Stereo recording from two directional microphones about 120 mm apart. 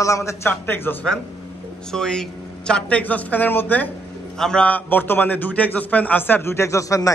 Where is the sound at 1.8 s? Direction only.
5° left (ahead or behind).